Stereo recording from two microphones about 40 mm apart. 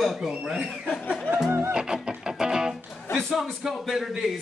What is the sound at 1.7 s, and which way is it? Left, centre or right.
Music, centre.